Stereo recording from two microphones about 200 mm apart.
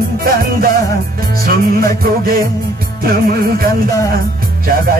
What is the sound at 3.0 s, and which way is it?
Music, 45° right (ahead or behind).